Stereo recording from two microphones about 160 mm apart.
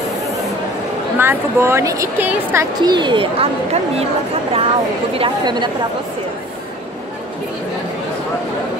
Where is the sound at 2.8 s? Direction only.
25° right (ahead or behind).